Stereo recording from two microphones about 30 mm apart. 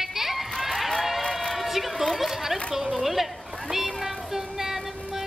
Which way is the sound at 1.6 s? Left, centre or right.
Centre.